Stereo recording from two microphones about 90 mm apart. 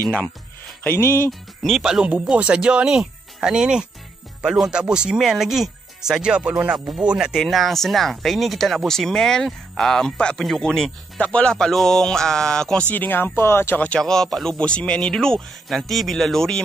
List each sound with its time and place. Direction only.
0.8 s speech: 25° left (ahead or behind)
1.6 s speech: 5° right (ahead or behind)
12.9 s speech: 20° left (ahead or behind)
13.8 s speech: 5° left (ahead or behind)